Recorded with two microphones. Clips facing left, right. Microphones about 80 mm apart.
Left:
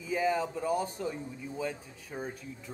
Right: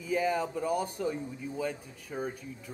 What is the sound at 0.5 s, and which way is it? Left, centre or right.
Speech, left.